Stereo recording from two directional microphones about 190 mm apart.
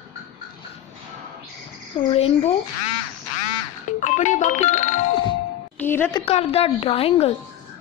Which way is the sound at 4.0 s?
40° left (ahead or behind).